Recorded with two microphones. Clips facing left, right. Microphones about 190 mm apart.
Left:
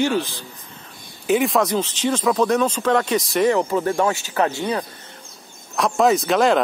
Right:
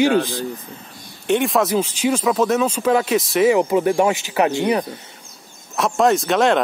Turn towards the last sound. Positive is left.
turn(degrees=0)  # may be behind; listen again after turning